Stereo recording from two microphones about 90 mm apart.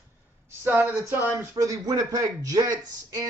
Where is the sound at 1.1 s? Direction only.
35° right (ahead or behind).